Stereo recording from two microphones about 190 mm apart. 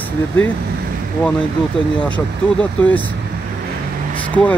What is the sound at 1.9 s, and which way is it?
Speech, 5° left (ahead or behind).